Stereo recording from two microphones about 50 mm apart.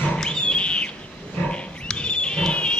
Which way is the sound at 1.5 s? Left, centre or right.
Left.